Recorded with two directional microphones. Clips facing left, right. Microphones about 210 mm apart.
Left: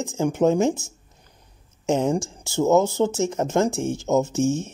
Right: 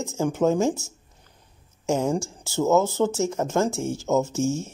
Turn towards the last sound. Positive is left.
turn(degrees=15)  # may be behind; listen again after turning